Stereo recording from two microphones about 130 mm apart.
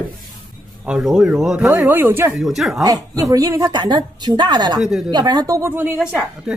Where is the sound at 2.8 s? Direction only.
25° right (ahead or behind).